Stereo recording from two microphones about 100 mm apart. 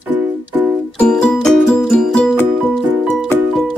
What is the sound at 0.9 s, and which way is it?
Music, 5° left (ahead or behind).